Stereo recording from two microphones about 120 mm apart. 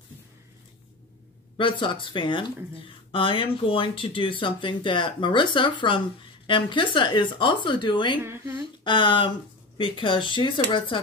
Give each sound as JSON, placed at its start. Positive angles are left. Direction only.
{"t": 1.6, "sound": "speech", "side_deg": 45}
{"t": 8.2, "sound": "speech", "side_deg": -20}
{"t": 8.8, "sound": "speech", "side_deg": 45}